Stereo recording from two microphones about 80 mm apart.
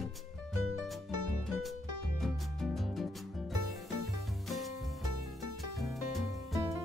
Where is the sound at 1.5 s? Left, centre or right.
Centre.